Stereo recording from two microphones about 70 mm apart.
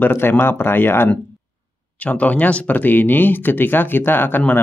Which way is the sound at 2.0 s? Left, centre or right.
Left.